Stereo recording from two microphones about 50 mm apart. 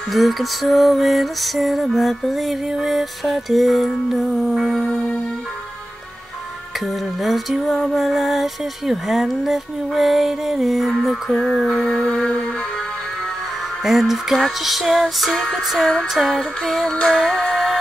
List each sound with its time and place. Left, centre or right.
0.1 s music: centre
4.8 s music: left
7.2 s music: centre
11.6 s music: centre
13.8 s music: centre
17.3 s music: centre